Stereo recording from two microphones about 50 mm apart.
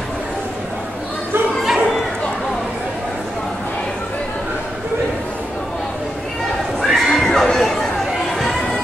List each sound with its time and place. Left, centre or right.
1.6 s dog: centre
6.8 s neigh: centre